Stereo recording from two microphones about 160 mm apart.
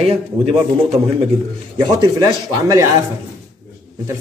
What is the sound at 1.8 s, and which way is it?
A man's voice, 25° right (ahead or behind).